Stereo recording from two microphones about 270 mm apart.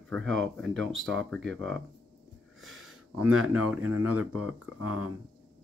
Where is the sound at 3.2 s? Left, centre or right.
Right.